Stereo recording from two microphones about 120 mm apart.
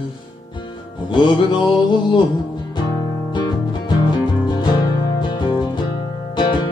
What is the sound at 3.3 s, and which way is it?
Music, 40° left (ahead or behind).